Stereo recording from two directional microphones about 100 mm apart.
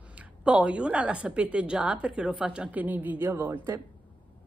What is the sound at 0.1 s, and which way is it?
A woman's voice, 10° right (ahead or behind).